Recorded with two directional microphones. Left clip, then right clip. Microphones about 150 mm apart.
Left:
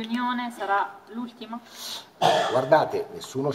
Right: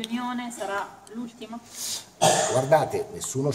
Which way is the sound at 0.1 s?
50° left (ahead or behind).